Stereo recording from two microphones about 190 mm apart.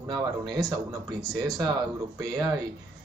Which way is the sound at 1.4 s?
20° right (ahead or behind).